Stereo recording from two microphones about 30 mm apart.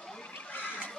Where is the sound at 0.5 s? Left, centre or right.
Left.